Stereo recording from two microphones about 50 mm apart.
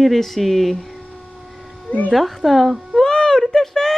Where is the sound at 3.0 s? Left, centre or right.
Centre.